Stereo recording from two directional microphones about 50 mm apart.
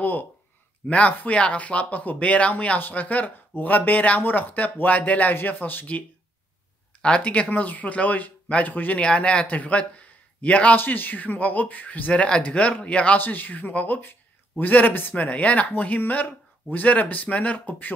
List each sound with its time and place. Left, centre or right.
0.8 s speech: left
7.2 s speech: left
9.0 s a man's voice: centre
10.8 s speech: left
12.1 s speech: left
13.2 s speech: left